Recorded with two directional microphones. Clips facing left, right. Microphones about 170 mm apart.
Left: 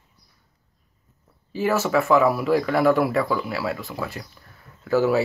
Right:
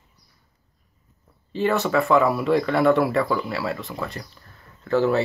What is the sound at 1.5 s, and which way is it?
Speech, 5° left (ahead or behind).